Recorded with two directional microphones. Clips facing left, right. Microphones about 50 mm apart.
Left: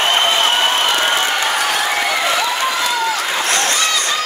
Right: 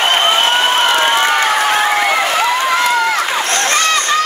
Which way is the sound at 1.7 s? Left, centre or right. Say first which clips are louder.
Right 4 dB; right.